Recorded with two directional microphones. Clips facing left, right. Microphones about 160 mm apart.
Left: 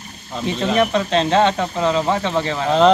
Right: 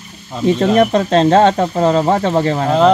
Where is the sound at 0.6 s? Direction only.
45° right (ahead or behind).